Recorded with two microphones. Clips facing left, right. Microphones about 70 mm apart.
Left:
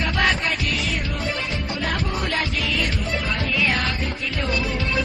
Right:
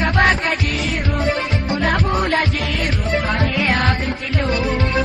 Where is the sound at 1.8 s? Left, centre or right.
Right.